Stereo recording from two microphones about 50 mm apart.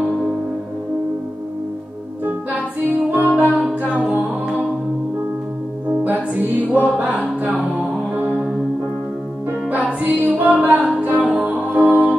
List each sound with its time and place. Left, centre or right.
3.1 s music: right
5.9 s music: right
9.5 s music: right
9.9 s a capella: right
11.0 s music: right
11.7 s music: right